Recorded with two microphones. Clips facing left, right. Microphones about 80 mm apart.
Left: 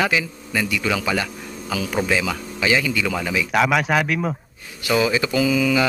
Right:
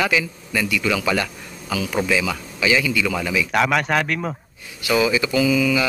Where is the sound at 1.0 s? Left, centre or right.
Centre.